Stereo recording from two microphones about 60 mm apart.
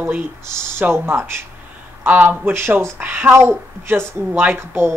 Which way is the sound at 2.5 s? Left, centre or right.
Right.